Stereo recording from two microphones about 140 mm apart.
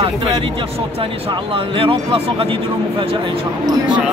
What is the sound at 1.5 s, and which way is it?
Speech, 40° right (ahead or behind).